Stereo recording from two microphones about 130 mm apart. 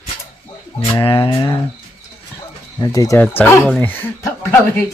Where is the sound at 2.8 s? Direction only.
30° left (ahead or behind).